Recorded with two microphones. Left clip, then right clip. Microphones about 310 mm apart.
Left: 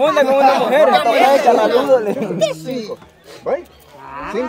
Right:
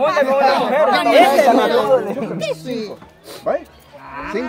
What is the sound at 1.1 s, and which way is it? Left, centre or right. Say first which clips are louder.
Speech: even; right.